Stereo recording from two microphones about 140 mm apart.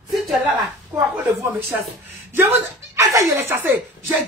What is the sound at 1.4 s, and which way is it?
Speech, 20° right (ahead or behind).